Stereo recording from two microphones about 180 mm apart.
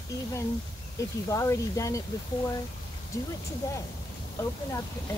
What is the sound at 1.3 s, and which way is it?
Speech, 20° left (ahead or behind).